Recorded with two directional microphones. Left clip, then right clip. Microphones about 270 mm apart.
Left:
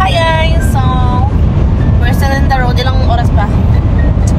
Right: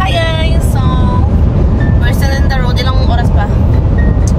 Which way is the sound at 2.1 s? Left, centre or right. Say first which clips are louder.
Left 3 dB; centre.